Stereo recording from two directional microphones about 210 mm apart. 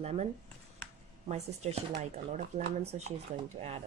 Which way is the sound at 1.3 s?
30° right (ahead or behind).